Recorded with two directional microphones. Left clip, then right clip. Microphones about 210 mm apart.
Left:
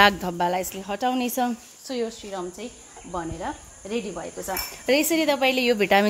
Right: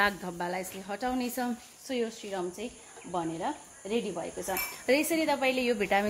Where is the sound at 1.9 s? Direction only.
20° left (ahead or behind).